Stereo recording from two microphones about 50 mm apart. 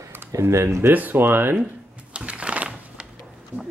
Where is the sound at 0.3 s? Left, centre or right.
Right.